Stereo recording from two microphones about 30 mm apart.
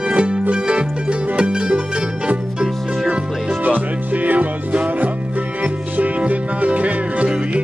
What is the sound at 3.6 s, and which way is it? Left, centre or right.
Music, right.